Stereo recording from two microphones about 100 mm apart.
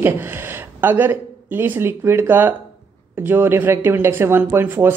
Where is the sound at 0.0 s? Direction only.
20° right (ahead or behind).